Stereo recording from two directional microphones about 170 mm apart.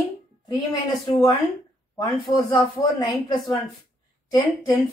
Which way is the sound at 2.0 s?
25° left (ahead or behind).